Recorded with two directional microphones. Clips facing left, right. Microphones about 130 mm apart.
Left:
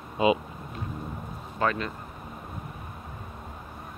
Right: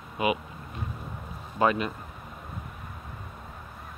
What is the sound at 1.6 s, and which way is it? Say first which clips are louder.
Speech: right 3 dB; 15° right (ahead or behind).